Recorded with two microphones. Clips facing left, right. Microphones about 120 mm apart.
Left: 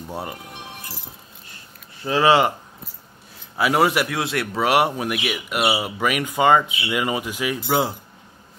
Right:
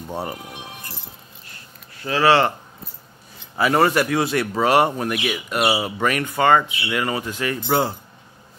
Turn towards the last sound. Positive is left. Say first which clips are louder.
# right 1 dB
turn(degrees=5)  # may be behind; listen again after turning